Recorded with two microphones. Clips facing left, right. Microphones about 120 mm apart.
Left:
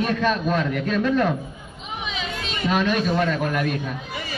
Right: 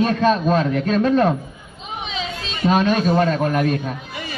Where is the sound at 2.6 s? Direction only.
30° right (ahead or behind).